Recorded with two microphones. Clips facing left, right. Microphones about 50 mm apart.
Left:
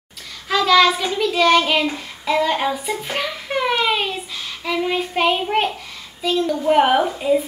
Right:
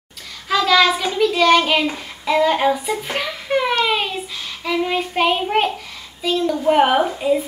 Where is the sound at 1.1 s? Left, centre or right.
Centre.